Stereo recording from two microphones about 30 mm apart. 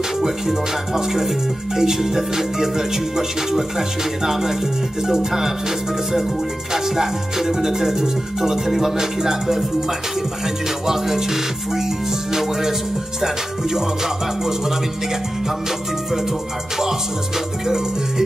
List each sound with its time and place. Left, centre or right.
0.2 s music: centre
6.7 s music: centre
10.9 s music: centre
17.6 s music: centre